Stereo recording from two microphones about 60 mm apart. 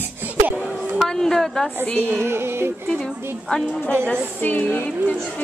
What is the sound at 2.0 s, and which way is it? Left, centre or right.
Music, right.